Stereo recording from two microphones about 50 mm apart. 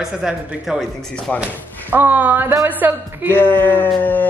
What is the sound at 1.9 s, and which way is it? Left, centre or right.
Speech, right.